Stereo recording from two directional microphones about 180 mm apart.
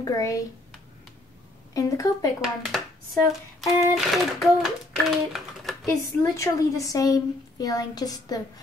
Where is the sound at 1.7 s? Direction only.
20° left (ahead or behind).